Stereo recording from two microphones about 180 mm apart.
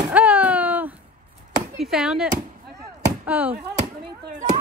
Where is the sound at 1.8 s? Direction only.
5° right (ahead or behind).